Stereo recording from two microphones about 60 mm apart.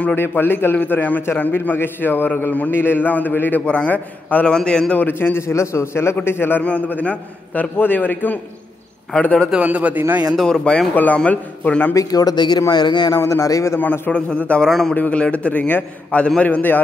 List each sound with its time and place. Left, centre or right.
0.1 s a man's voice: left
3.6 s a man's voice: left
4.5 s a man's voice: centre
4.9 s a man's voice: left
6.1 s a man's voice: left
6.9 s a man's voice: left
9.6 s a man's voice: right
10.3 s a man's voice: centre
11.1 s a man's voice: centre
11.9 s speech: left
13.2 s speech: left
13.7 s a man's voice: left
14.7 s a man's voice: centre
15.0 s a man's voice: left